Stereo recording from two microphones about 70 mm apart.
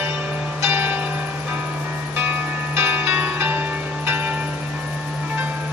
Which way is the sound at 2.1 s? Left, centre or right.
Right.